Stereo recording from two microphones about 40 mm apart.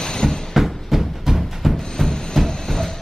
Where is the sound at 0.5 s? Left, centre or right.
Centre.